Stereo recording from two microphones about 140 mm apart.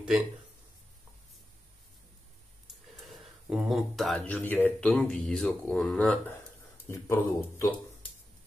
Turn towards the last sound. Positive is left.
turn(degrees=20)  # may be behind; listen again after turning